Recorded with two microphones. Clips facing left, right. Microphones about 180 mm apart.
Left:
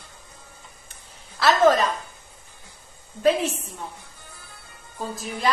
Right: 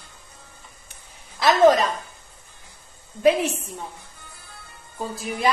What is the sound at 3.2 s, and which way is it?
Speech, 15° right (ahead or behind).